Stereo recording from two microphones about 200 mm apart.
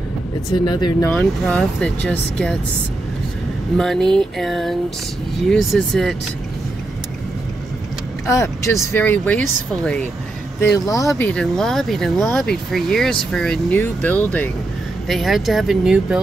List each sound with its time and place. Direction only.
0.7 s speech: 20° left (ahead or behind)
1.0 s speech: 10° left (ahead or behind)
3.7 s speech: centre (ahead or behind)
8.3 s speech: 15° left (ahead or behind)
10.9 s speech: 15° left (ahead or behind); by 16.2 s 5° right (ahead or behind)